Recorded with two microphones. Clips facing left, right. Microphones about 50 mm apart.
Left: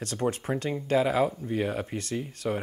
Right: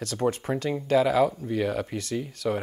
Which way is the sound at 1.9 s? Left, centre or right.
Centre.